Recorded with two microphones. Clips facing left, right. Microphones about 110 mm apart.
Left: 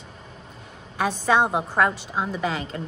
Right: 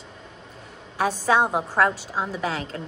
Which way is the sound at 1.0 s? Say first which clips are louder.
Even; 5° right (ahead or behind).